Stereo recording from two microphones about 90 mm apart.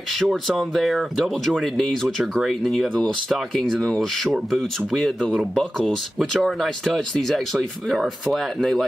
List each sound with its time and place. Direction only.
0.2 s speech: centre (ahead or behind)